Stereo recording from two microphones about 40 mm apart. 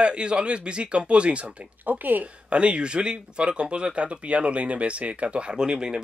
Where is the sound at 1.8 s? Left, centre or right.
Right.